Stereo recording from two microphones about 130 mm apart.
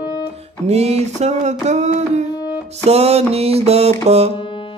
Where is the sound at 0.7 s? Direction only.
55° right (ahead or behind).